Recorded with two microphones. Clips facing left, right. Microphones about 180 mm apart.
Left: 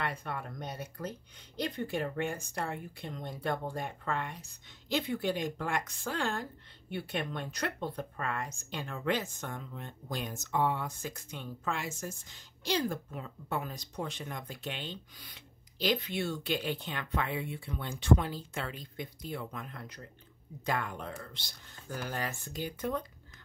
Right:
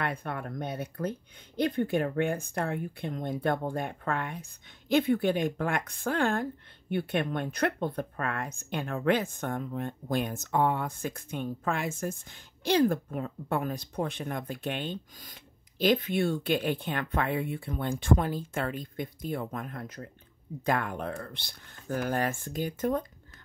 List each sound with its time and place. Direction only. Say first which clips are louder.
0.0 s speech: right 4 dB; 55° right (ahead or behind)